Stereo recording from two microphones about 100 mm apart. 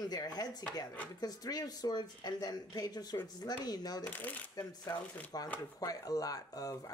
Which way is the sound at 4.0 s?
15° left (ahead or behind).